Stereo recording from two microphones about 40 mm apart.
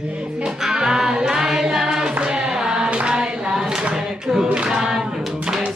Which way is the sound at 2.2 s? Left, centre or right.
Centre.